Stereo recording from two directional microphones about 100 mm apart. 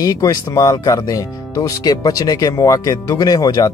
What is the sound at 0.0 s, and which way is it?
Speech, 35° left (ahead or behind).